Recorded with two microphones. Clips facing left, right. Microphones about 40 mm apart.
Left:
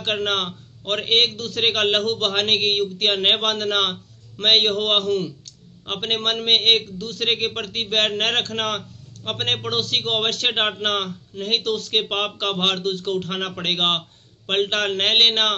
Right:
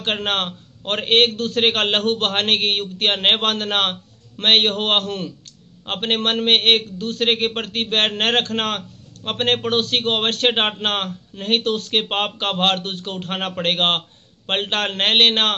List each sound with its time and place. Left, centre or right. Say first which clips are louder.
0.0 s a man's voice: right 1 dB; right